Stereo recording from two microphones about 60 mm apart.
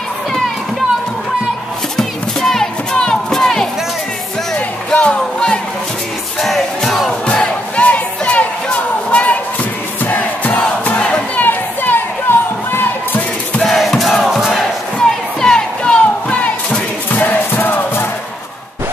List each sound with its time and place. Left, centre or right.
2.0 s crowd: centre
4.6 s music: left
6.4 s battle cry: centre
7.7 s music: left
10.0 s crowd: left
11.4 s a sound: left
13.7 s crowd: centre
15.0 s crowd: centre
17.1 s music: left